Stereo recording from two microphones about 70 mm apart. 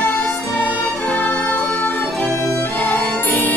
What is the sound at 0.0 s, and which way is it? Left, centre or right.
Music, left.